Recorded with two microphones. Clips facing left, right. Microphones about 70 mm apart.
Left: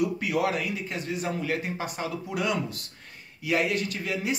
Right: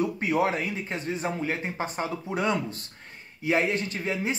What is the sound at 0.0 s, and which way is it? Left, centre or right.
Speech, right.